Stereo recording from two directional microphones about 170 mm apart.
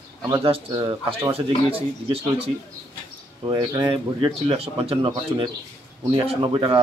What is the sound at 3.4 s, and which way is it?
Speech, 25° right (ahead or behind).